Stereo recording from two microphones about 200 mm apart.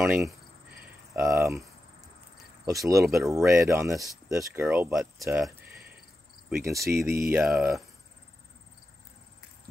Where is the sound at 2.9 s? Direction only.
15° right (ahead or behind).